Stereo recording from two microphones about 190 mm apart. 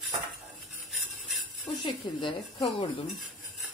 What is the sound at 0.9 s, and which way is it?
Jingle bell, centre (ahead or behind).